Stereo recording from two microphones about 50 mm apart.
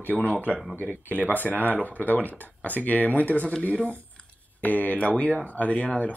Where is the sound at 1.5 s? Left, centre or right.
Right.